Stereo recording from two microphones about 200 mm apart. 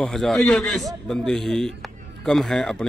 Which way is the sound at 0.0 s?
Centre (ahead or behind).